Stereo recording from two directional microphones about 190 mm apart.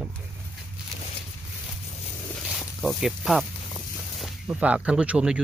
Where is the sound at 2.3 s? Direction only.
5° right (ahead or behind).